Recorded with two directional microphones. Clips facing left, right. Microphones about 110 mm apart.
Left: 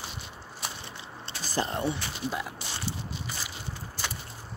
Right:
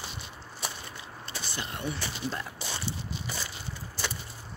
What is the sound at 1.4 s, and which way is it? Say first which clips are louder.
Speech: left 8 dB; 35° left (ahead or behind).